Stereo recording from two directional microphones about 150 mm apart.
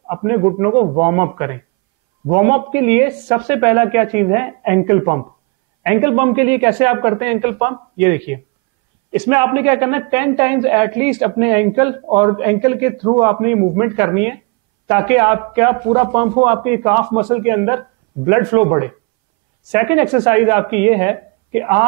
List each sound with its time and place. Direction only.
0.1 s a man's voice: 20° right (ahead or behind)